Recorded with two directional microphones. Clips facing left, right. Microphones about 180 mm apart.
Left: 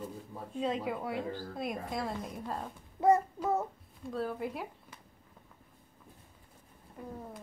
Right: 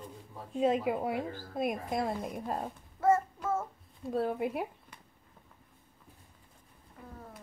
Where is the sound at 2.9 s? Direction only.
15° left (ahead or behind).